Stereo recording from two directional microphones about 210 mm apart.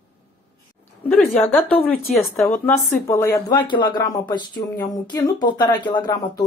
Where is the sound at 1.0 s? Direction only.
5° left (ahead or behind).